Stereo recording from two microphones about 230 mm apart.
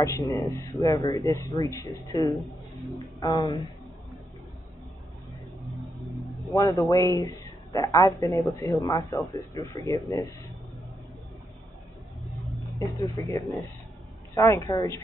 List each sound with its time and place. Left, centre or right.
0.0 s speech: centre
2.3 s speech: centre
3.0 s speech: centre
5.6 s a sound: centre
6.5 s speech: centre
12.3 s vehicle: centre
13.0 s speech: centre